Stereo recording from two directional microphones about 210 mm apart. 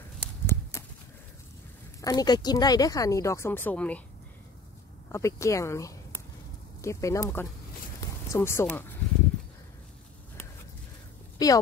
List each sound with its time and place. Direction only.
0.2 s a sound: 10° left (ahead or behind)
2.0 s speech: 15° left (ahead or behind)
5.1 s speech: 15° left (ahead or behind)
11.3 s speech: 15° left (ahead or behind)